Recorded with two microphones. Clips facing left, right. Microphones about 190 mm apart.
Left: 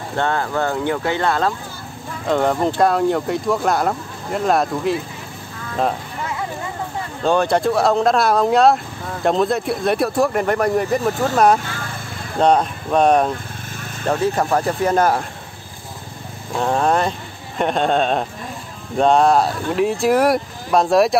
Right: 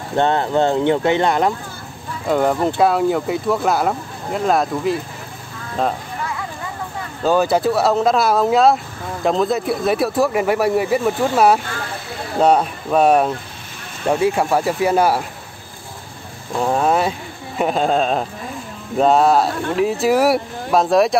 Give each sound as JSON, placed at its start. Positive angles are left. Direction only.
{"t": 0.1, "sound": "speech", "side_deg": -20}
{"t": 2.2, "sound": "speech", "side_deg": -5}
{"t": 7.2, "sound": "speech", "side_deg": -5}
{"t": 16.5, "sound": "speech", "side_deg": -5}